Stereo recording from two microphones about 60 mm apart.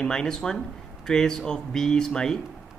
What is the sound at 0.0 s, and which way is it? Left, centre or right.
Speech, centre.